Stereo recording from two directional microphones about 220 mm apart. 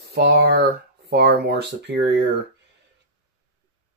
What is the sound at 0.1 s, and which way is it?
Speech, 45° right (ahead or behind).